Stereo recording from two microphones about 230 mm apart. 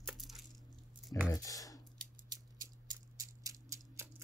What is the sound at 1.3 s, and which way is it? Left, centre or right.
Speech, centre.